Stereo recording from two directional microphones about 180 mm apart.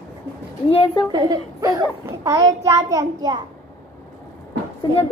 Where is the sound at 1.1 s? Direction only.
20° right (ahead or behind).